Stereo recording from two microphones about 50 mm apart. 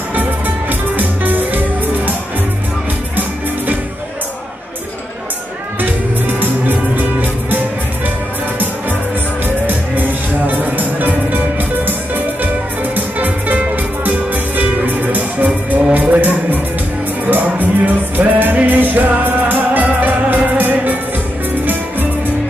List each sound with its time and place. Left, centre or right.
0.1 s music: right
5.8 s music: right
9.7 s music: right
12.9 s music: right